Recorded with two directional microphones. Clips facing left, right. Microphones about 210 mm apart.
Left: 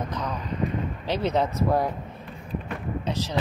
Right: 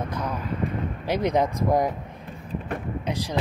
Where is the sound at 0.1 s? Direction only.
10° right (ahead or behind).